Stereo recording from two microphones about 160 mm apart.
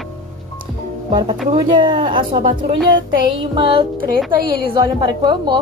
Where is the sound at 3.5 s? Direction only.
30° right (ahead or behind).